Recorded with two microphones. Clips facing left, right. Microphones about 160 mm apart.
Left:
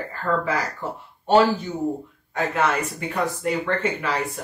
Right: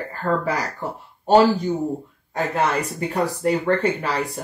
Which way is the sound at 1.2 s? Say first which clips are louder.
Right 2 dB; 35° right (ahead or behind).